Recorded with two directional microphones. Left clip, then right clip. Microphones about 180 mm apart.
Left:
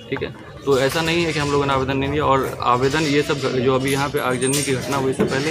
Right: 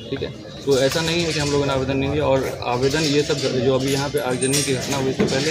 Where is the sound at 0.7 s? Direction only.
15° left (ahead or behind).